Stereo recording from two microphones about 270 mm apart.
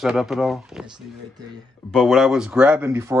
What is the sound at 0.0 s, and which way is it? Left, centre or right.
Speech, centre.